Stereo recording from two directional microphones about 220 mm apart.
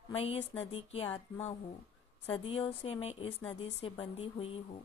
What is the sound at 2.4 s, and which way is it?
Speech, 25° left (ahead or behind).